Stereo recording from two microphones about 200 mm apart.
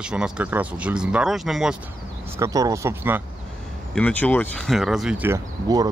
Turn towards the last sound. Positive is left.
turn(degrees=-20)  # may be behind; listen again after turning